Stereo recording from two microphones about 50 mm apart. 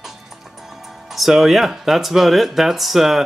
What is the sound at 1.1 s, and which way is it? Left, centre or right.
Speech, centre.